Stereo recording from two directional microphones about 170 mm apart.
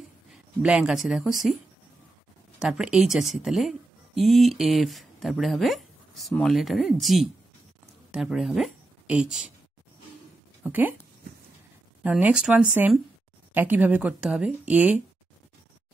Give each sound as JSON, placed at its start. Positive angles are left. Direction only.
{"t": 0.3, "sound": "speech", "side_deg": -5}
{"t": 2.6, "sound": "a woman's voice", "side_deg": -5}
{"t": 10.6, "sound": "speech", "side_deg": -10}
{"t": 12.0, "sound": "speech", "side_deg": -5}